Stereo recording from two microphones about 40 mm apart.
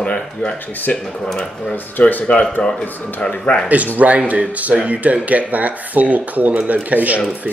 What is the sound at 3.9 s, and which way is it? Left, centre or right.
Speech, right.